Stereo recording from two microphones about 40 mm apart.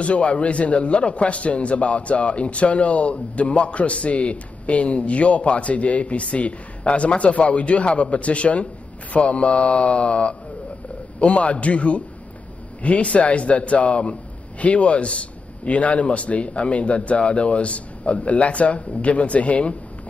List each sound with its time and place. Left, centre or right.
0.0 s a man's voice: left